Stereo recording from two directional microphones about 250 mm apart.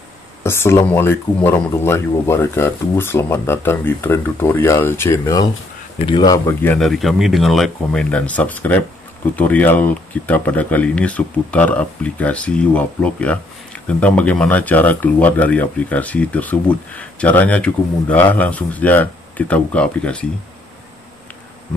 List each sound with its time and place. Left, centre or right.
0.4 s speech: centre